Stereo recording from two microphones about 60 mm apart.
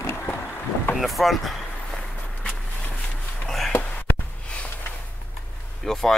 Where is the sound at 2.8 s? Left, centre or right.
Left.